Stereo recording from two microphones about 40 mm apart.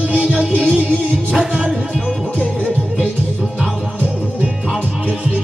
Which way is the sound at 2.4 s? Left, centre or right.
Left.